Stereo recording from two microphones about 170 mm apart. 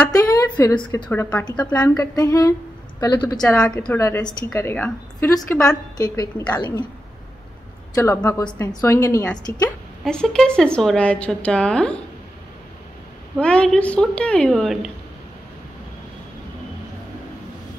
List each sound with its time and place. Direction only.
0.1 s a woman's voice: 20° left (ahead or behind)
1.0 s a woman's voice: 5° left (ahead or behind)
1.7 s a woman's voice: 20° left (ahead or behind)
3.3 s a woman's voice: 5° left (ahead or behind)
3.8 s a woman's voice: 15° left (ahead or behind)
7.9 s a woman's voice: 15° left (ahead or behind)
10.0 s a woman's voice: 5° left (ahead or behind)
13.4 s a woman's voice: 5° left (ahead or behind)